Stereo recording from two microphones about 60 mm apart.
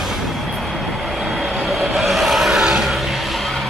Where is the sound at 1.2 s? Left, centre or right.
Centre.